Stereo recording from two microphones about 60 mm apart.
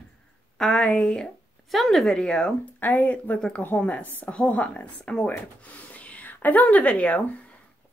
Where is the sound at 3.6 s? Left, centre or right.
Left; by 5.3 s centre.